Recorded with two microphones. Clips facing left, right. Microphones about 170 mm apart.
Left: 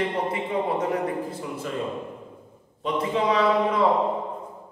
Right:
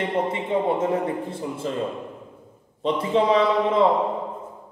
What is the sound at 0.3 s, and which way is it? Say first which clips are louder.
A man's voice: right 3 dB; 25° right (ahead or behind).